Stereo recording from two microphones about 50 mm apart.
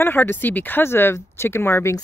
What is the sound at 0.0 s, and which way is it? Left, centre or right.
Speech, left.